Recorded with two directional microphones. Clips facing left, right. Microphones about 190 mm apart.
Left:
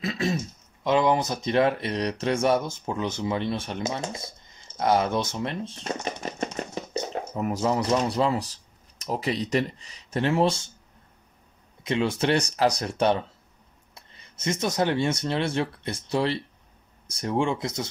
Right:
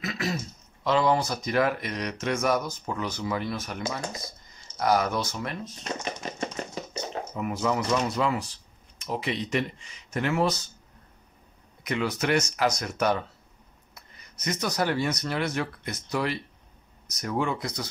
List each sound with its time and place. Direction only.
0.0 s throat clearing: 25° left (ahead or behind)
0.8 s speech: 20° left (ahead or behind)
6.9 s speech: 40° left (ahead or behind)
11.8 s speech: 25° left (ahead or behind)